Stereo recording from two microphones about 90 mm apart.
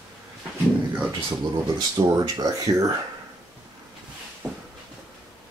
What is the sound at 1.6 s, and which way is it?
Speech, 40° right (ahead or behind).